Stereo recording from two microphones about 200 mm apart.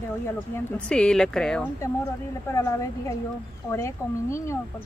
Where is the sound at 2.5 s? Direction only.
15° left (ahead or behind).